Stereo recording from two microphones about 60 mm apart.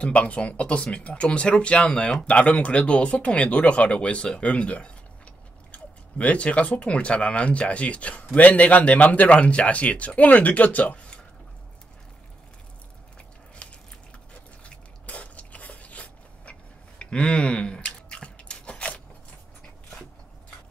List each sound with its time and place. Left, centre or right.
0.0 s speech: centre
13.6 s biting: left
14.6 s a sound: centre